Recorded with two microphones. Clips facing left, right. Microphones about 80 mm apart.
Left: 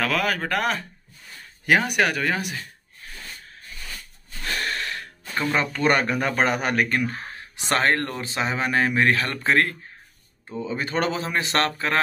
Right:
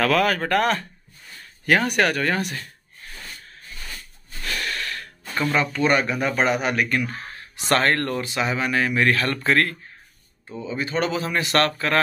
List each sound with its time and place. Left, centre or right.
0.0 s speech: centre
4.5 s gasp: left
5.6 s speech: left
7.3 s speech: centre
8.3 s speech: left
10.6 s speech: left
11.1 s speech: left